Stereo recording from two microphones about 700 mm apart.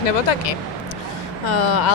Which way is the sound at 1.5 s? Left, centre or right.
Left.